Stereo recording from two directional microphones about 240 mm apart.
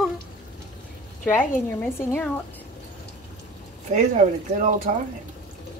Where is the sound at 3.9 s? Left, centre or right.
Right.